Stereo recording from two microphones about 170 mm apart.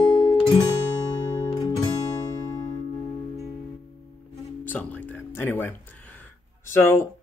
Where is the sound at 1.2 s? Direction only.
25° left (ahead or behind).